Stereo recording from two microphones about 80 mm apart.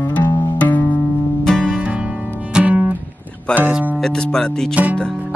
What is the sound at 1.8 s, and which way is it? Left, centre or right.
Music, centre.